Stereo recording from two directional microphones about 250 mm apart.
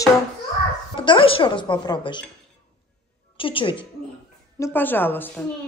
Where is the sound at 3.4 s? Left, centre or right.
Centre.